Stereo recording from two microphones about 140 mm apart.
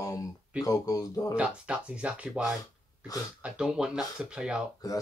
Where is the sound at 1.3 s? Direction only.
10° right (ahead or behind).